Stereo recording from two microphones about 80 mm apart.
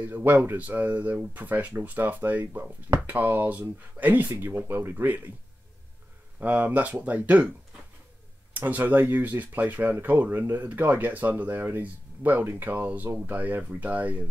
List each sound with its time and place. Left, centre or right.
0.0 s speech: right
6.4 s speech: right
8.5 s speech: right